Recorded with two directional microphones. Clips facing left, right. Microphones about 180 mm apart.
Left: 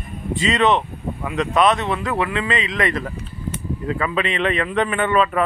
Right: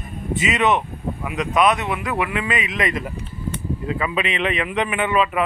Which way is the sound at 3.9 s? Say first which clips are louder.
Left 2 dB; 15° right (ahead or behind).